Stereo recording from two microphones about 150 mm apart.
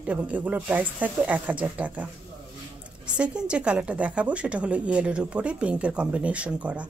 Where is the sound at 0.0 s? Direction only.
10° right (ahead or behind).